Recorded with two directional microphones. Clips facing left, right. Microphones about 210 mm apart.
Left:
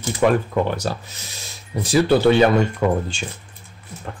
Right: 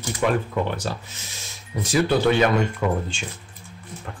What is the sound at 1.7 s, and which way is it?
Speech, 30° left (ahead or behind).